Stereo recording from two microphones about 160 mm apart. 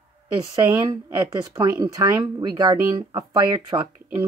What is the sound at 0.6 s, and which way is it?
Speech, 15° right (ahead or behind).